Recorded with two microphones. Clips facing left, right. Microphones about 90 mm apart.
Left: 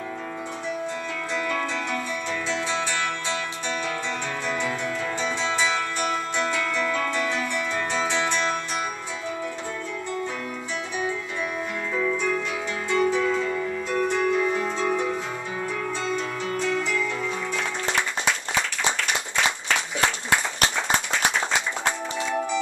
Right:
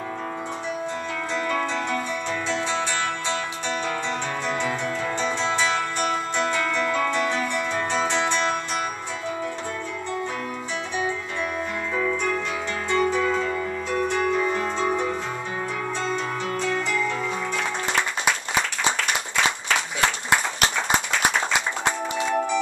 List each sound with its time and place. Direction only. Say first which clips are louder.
1.3 s music: right 2 dB; centre (ahead or behind)
4.5 s music: right 1 dB; centre (ahead or behind)
11.9 s music: even; 5° right (ahead or behind)
18.2 s applause: right 2 dB; 15° right (ahead or behind)
20.2 s music: right 1 dB; 15° right (ahead or behind)